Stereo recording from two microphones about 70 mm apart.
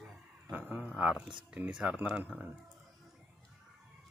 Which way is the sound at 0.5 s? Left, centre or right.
Right.